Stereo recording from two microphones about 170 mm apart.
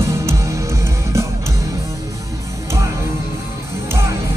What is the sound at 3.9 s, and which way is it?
Music, 15° right (ahead or behind).